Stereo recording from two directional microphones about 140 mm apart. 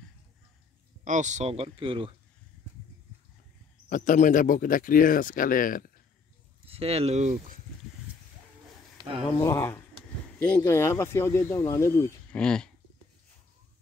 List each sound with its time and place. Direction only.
1.0 s speech: 60° right (ahead or behind); by 2.1 s 40° right (ahead or behind)
3.9 s speech: 70° left (ahead or behind)
6.6 s speech: 45° right (ahead or behind)
8.9 s a sound: 40° right (ahead or behind)
9.4 s speech: 20° left (ahead or behind)
12.3 s speech: 5° left (ahead or behind)